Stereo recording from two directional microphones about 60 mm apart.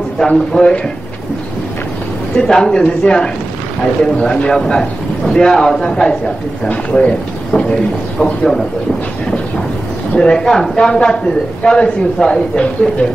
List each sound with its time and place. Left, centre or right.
0.3 s a man's voice: centre
2.3 s a man's voice: centre
8.2 s a man's voice: centre
10.1 s a man's voice: centre